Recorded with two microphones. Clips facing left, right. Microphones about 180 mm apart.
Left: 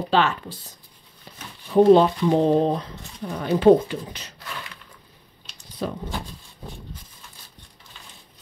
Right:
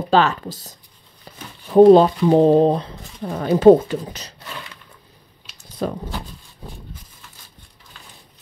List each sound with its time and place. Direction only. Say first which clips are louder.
0.1 s speech: right 5 dB; 40° right (ahead or behind)
5.8 s speech: right 4 dB; 45° right (ahead or behind)